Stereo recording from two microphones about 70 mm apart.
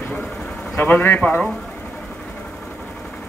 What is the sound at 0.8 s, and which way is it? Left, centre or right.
Speech, left.